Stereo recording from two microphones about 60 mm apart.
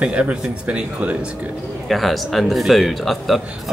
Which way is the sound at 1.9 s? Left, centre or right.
Centre.